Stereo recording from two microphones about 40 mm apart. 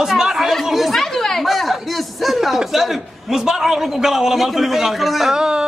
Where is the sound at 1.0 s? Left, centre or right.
Centre.